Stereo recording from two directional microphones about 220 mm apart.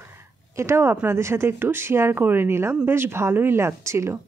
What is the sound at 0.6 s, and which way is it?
A woman's voice, 10° right (ahead or behind).